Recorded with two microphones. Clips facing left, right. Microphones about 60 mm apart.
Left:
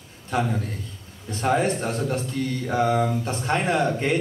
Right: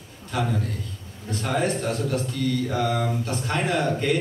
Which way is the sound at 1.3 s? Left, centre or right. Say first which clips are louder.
Left 3 dB; left.